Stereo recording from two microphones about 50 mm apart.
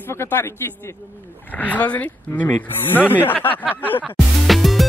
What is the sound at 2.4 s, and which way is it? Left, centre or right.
Speech, left.